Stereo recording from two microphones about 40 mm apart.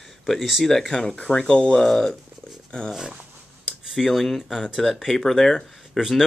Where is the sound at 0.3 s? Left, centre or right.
Centre.